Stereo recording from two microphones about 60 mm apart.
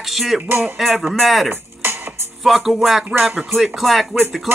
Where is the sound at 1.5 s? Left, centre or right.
Right.